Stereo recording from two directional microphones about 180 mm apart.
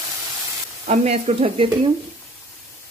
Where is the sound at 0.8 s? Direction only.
35° right (ahead or behind).